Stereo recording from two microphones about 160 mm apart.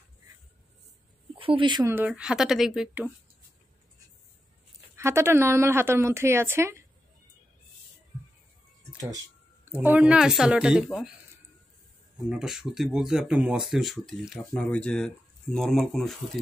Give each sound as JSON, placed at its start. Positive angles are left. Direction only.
{"t": 1.3, "sound": "speech", "side_deg": -35}
{"t": 1.9, "sound": "speech", "side_deg": -10}
{"t": 4.9, "sound": "a woman's voice", "side_deg": -15}
{"t": 9.7, "sound": "speech", "side_deg": -10}
{"t": 12.3, "sound": "speech", "side_deg": -5}